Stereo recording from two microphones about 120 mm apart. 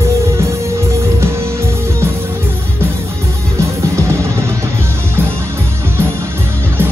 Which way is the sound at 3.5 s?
25° right (ahead or behind).